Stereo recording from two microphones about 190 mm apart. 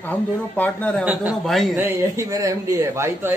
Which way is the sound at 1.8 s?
15° right (ahead or behind).